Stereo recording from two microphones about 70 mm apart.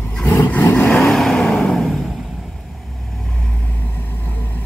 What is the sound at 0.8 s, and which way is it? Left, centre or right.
Vehicle, centre.